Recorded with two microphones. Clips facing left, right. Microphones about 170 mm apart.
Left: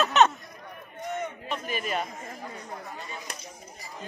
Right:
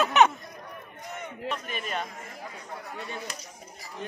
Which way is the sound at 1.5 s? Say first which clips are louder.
Right 1 dB; 5° left (ahead or behind).